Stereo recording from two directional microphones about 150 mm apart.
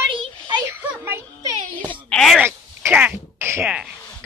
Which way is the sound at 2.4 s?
10° right (ahead or behind).